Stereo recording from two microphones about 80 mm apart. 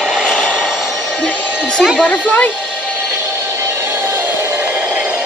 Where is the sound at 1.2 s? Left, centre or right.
Left.